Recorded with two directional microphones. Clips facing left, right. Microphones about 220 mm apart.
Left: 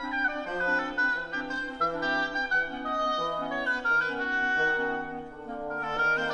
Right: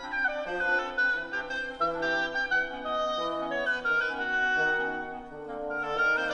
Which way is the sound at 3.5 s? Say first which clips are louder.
Right 1 dB; 25° right (ahead or behind).